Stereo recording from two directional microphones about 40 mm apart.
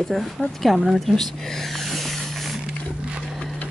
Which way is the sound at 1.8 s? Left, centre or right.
Centre.